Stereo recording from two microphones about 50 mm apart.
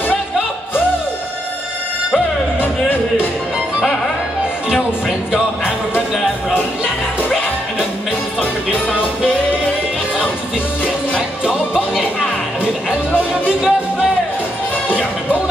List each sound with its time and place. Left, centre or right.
2.6 s music: left
4.6 s music: centre
11.1 s music: centre